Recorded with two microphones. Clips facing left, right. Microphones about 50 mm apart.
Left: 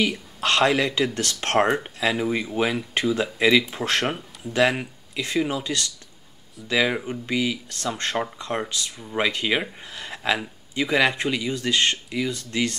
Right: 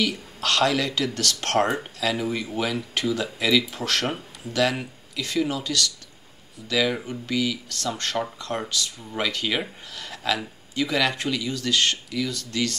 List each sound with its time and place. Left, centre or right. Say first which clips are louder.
0.0 s speech: left 2 dB; left